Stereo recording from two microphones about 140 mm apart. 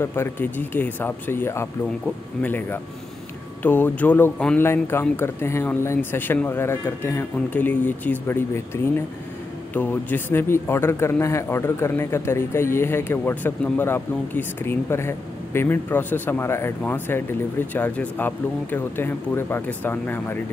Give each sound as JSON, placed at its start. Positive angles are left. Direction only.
{"t": 0.0, "sound": "speech", "side_deg": 15}